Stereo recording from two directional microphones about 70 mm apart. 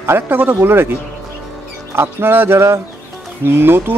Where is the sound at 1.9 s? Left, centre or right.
Right.